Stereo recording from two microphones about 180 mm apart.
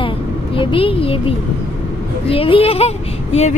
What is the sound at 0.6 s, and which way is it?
A child's voice, 30° left (ahead or behind).